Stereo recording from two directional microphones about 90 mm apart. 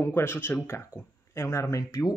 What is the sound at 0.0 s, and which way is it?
Speech, 25° left (ahead or behind).